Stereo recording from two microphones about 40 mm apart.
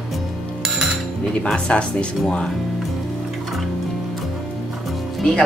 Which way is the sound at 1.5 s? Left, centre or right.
Left.